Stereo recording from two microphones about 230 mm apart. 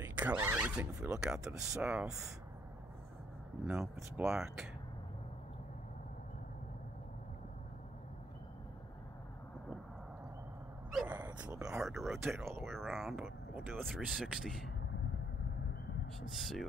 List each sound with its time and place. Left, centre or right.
0.0 s speech: centre
3.6 s speech: centre
10.9 s a sound: centre
12.3 s speech: centre
16.2 s speech: centre